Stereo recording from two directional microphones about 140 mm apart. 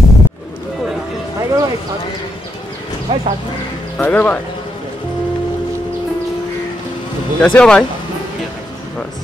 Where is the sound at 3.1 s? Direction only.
35° right (ahead or behind).